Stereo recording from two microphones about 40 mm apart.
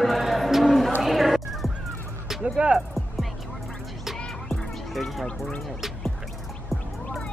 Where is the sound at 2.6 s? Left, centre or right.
Right.